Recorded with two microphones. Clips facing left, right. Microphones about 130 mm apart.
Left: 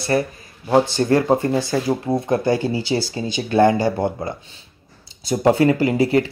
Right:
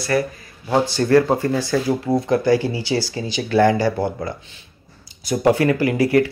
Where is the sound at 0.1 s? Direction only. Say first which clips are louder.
Even; 30° left (ahead or behind).